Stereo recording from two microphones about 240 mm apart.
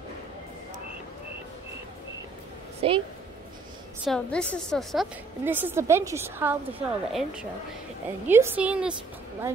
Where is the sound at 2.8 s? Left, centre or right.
Right.